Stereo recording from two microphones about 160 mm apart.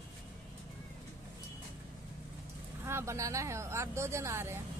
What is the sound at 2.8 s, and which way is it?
Speech, 15° right (ahead or behind).